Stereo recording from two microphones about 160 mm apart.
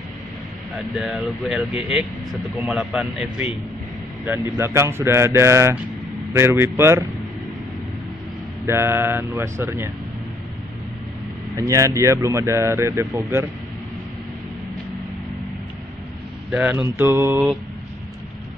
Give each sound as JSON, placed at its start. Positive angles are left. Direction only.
{"t": 0.9, "sound": "speech", "side_deg": -5}
{"t": 8.6, "sound": "speech", "side_deg": -15}
{"t": 11.5, "sound": "speech", "side_deg": -20}
{"t": 16.5, "sound": "speech", "side_deg": -10}